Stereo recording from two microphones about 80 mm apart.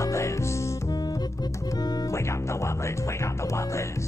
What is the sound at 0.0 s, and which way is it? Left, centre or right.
Music, left.